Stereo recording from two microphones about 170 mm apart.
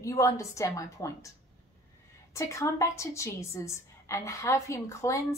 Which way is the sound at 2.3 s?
15° left (ahead or behind).